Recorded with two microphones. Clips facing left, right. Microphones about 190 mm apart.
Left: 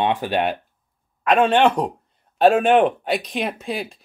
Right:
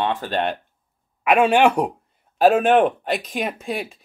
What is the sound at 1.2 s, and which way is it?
Speech, 10° right (ahead or behind).